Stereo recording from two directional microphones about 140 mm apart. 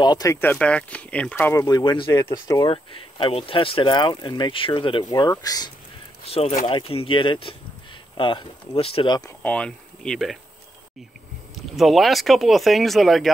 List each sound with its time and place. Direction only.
0.0 s speech: 30° left (ahead or behind)
0.4 s speech: 10° left (ahead or behind)
1.9 s speech: 35° left (ahead or behind)
5.0 s speech: 25° left (ahead or behind)
6.2 s speech: 45° left (ahead or behind)
9.4 s speech: 10° left (ahead or behind)
11.5 s speech: centre (ahead or behind)